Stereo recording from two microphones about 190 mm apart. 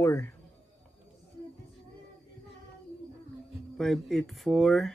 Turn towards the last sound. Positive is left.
turn(degrees=0)  # may be behind; listen again after turning